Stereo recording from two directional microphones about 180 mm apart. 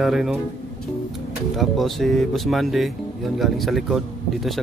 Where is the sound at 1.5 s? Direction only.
Centre (ahead or behind).